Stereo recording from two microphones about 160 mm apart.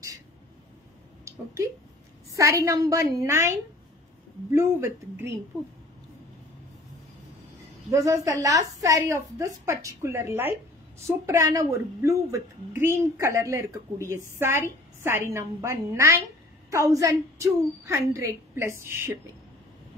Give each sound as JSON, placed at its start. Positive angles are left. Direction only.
{"t": 1.2, "sound": "a woman's voice", "side_deg": -20}
{"t": 7.9, "sound": "a woman's voice", "side_deg": -20}